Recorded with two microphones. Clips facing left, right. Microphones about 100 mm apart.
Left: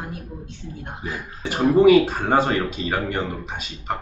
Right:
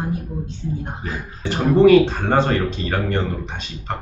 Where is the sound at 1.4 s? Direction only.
5° left (ahead or behind).